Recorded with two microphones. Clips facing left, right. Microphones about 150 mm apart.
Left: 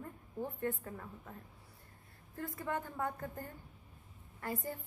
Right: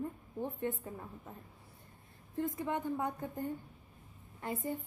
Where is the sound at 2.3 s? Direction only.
20° right (ahead or behind).